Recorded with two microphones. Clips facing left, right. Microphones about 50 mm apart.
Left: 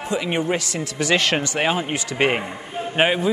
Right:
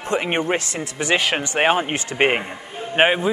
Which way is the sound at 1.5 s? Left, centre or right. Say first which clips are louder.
Right 3 dB; right.